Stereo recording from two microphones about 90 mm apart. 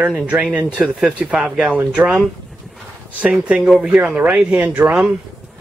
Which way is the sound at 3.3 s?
10° right (ahead or behind).